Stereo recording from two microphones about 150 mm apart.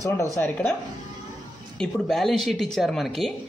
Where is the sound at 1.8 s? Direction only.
Centre (ahead or behind).